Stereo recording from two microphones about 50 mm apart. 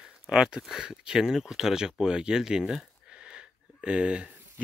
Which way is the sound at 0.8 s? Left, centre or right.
Centre.